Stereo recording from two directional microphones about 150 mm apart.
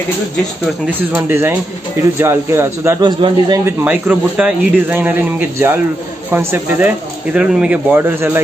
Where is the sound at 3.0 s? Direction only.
30° right (ahead or behind).